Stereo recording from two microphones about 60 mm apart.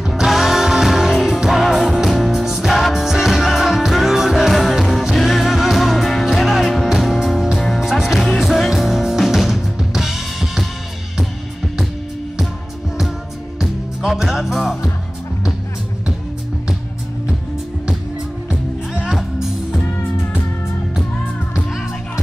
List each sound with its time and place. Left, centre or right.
0.0 s music: centre
13.6 s music: centre
18.9 s music: centre
19.8 s music: left